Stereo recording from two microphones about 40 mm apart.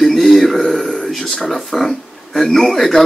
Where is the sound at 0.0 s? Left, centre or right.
Centre.